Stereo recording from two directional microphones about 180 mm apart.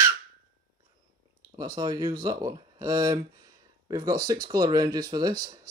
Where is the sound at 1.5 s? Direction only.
25° right (ahead or behind).